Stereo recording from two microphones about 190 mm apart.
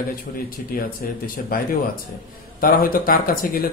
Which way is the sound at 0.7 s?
50° left (ahead or behind).